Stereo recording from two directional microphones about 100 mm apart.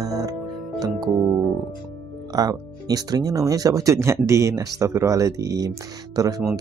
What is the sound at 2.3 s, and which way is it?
Speech, 40° right (ahead or behind).